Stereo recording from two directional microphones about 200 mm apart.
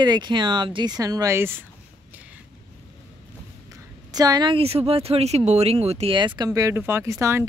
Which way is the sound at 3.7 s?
20° right (ahead or behind).